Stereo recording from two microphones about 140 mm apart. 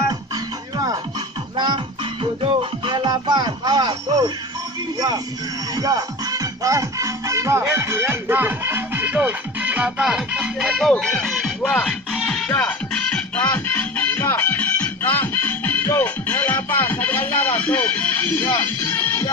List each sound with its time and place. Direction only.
2.4 s music: 35° right (ahead or behind)
5.8 s speech: 25° right (ahead or behind); by 10.9 s 5° right (ahead or behind)
10.9 s speech: 5° left (ahead or behind)
11.7 s music: 5° left (ahead or behind)
12.4 s music: 15° left (ahead or behind)